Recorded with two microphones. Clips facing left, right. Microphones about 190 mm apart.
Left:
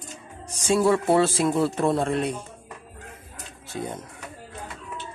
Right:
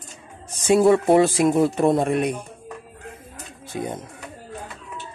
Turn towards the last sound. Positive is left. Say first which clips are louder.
# right 3 dB
turn(degrees=-15)  # may be behind; listen again after turning